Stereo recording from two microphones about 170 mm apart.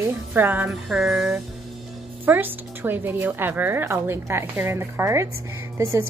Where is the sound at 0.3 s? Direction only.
10° right (ahead or behind).